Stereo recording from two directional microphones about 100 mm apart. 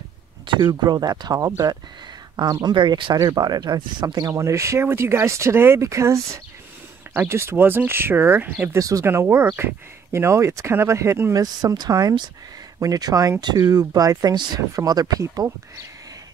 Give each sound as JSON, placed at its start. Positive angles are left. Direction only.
{"t": 0.5, "sound": "a sound", "side_deg": -55}
{"t": 0.8, "sound": "speech", "side_deg": -40}
{"t": 2.6, "sound": "speech", "side_deg": -50}
{"t": 4.3, "sound": "speech", "side_deg": -30}
{"t": 8.6, "sound": "speech", "side_deg": -35}
{"t": 11.4, "sound": "speech", "side_deg": -45}